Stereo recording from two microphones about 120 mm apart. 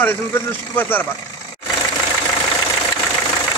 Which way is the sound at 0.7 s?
15° left (ahead or behind).